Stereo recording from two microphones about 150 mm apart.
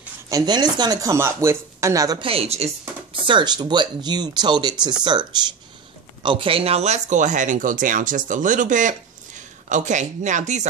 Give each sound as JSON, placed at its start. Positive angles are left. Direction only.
{"t": 0.3, "sound": "speech", "side_deg": -25}
{"t": 2.2, "sound": "a woman's voice", "side_deg": -40}
{"t": 3.3, "sound": "speech", "side_deg": -30}